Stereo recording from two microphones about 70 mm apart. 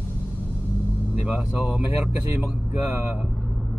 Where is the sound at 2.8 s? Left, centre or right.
Centre.